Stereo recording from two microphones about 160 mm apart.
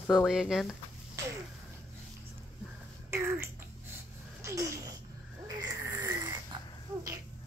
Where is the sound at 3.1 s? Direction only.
15° right (ahead or behind).